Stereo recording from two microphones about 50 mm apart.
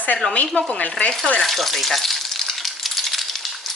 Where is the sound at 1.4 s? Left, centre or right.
Centre.